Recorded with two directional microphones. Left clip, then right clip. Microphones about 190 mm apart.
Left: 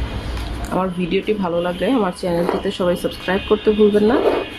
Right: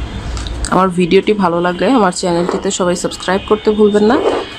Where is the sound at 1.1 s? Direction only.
35° right (ahead or behind).